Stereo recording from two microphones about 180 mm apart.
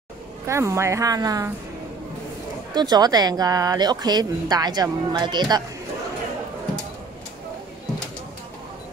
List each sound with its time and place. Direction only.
0.5 s a woman's voice: 15° right (ahead or behind)
2.7 s speech: 25° right (ahead or behind)